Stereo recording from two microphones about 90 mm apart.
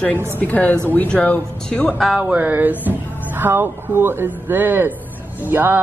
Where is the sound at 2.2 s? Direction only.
15° right (ahead or behind).